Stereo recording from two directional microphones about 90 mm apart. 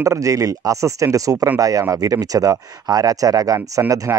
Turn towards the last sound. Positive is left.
turn(degrees=-25)  # may be behind; listen again after turning